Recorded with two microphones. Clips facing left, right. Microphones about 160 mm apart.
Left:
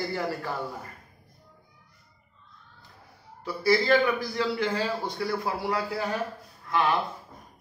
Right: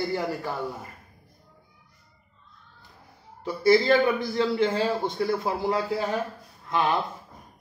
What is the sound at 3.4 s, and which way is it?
A man's voice, 25° right (ahead or behind).